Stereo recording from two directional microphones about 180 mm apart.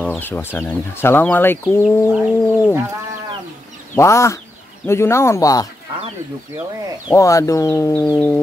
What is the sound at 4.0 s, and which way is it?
Speech, 15° left (ahead or behind).